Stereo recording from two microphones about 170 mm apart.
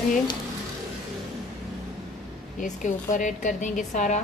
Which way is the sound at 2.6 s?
50° left (ahead or behind).